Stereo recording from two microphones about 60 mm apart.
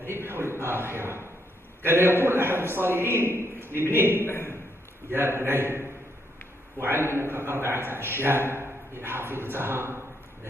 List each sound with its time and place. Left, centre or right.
0.0 s a man's voice: right
4.2 s a man's voice: left
5.1 s a man's voice: right